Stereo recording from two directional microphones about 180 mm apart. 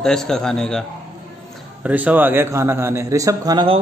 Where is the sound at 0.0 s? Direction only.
5° left (ahead or behind).